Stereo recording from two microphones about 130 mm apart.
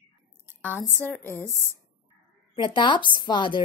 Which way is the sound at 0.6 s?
10° left (ahead or behind).